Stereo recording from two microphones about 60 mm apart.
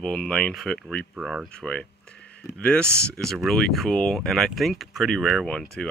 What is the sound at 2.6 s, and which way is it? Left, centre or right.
Speech, centre.